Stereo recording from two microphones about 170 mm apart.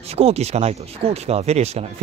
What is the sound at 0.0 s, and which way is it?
A man's voice, 35° right (ahead or behind).